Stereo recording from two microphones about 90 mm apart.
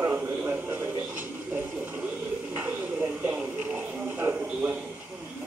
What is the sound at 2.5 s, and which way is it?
Music, 15° right (ahead or behind).